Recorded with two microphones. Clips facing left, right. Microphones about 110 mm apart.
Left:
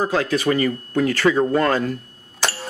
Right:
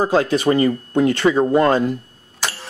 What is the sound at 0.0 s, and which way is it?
Speech, 30° right (ahead or behind).